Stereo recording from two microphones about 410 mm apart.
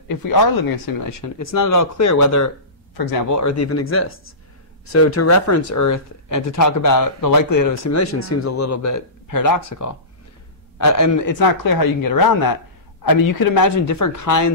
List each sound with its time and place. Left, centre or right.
0.1 s speech: left